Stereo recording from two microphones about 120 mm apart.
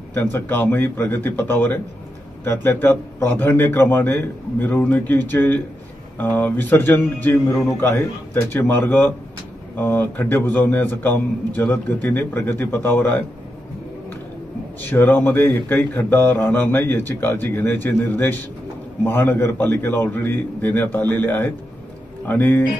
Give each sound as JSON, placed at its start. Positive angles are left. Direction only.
{"t": 0.1, "sound": "speech", "side_deg": 15}
{"t": 14.9, "sound": "speech", "side_deg": 15}